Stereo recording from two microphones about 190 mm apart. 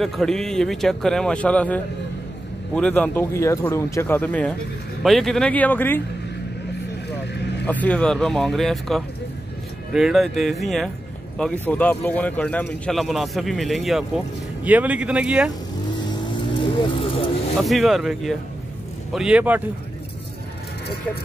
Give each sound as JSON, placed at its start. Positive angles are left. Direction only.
{"t": 0.0, "sound": "speech", "side_deg": 0}
{"t": 7.6, "sound": "speech", "side_deg": 10}
{"t": 16.5, "sound": "vehicle", "side_deg": 25}
{"t": 17.6, "sound": "speech", "side_deg": 0}